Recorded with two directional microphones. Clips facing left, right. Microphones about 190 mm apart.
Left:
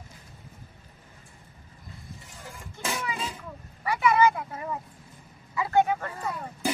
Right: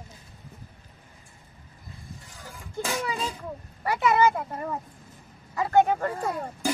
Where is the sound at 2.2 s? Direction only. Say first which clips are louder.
Even; centre (ahead or behind).